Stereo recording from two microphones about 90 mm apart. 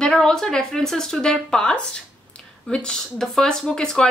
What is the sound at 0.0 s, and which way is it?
A woman's voice, 5° left (ahead or behind).